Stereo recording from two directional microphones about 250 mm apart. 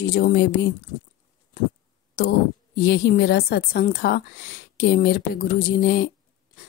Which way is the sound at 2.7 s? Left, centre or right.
Left.